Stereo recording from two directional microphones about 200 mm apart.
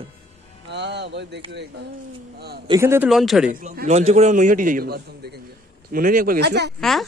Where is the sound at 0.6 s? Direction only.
60° right (ahead or behind).